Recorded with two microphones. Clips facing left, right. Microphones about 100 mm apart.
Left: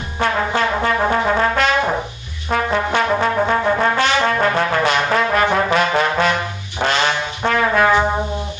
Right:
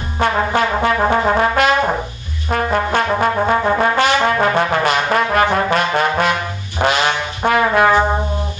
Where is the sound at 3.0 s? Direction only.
5° right (ahead or behind).